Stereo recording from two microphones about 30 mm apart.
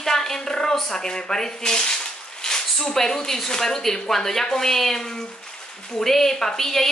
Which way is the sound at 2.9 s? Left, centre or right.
Centre.